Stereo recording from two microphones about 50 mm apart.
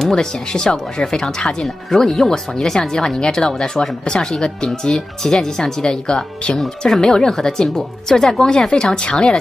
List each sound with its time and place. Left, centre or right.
0.0 s speech: centre